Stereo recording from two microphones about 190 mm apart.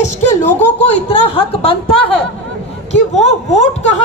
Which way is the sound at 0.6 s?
35° left (ahead or behind).